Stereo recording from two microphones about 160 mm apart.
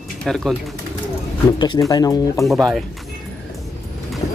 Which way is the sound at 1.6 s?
25° left (ahead or behind).